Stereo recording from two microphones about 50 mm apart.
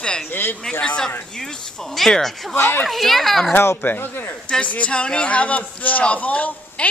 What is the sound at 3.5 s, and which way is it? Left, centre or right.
Speech, left.